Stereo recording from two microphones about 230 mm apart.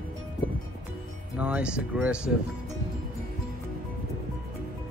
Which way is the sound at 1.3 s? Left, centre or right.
Centre.